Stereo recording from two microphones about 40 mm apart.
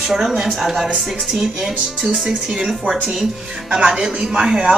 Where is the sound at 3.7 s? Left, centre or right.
Right.